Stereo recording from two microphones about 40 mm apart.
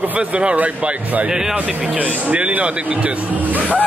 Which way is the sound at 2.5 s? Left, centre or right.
Right.